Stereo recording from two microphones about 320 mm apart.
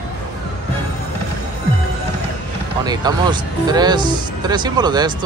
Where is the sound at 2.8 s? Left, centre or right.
Centre.